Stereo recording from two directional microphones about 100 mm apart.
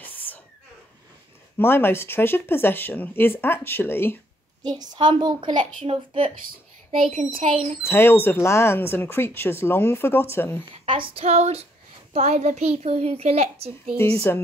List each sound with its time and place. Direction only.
0.0 s a sound: 15° left (ahead or behind)
1.6 s speech: 25° left (ahead or behind)
4.6 s a child's voice: 45° right (ahead or behind)
5.9 s speech: 60° right (ahead or behind)
7.2 s speech: 75° right (ahead or behind)
7.8 s speech: 25° left (ahead or behind)
10.7 s female singing: 65° right (ahead or behind); by 11.6 s 90° right
12.1 s a child's voice: 90° right
13.9 s speech: 30° left (ahead or behind)